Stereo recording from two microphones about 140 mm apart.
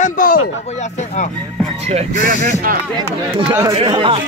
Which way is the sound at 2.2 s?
90° right.